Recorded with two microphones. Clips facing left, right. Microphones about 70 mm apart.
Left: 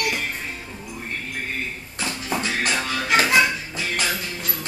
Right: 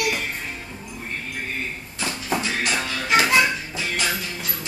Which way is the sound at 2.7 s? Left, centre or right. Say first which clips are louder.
Right 1 dB; centre.